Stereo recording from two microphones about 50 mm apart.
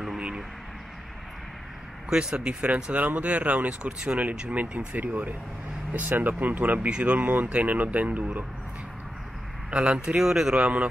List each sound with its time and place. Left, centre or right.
2.0 s speech: centre
7.2 s speech: right
9.7 s speech: centre